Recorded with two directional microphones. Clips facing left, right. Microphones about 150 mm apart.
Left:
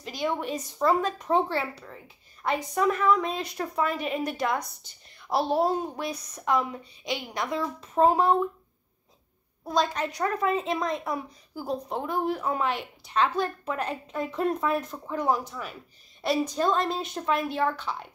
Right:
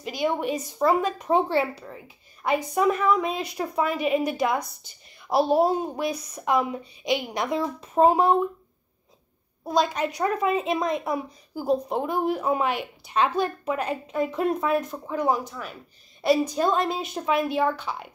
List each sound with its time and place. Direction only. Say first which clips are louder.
0.0 s a woman's voice: right 4 dB; 10° right (ahead or behind)
9.7 s a woman's voice: right 3 dB; 10° right (ahead or behind)